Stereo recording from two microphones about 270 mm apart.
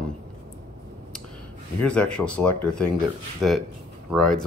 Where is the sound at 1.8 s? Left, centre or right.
Centre.